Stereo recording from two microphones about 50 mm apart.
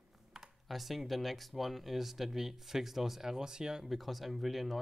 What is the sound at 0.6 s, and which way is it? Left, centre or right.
Speech, centre.